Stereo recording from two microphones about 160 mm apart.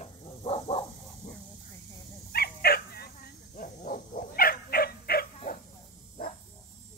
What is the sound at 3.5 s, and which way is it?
Dog, 55° left (ahead or behind).